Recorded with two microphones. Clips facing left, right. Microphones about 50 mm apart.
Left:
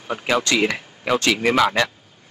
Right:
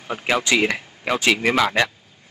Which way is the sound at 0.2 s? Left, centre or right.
Centre.